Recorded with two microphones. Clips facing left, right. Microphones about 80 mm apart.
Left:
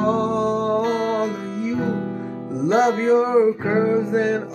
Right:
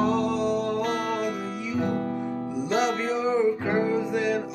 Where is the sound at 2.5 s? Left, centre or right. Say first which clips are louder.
Left 8 dB; left.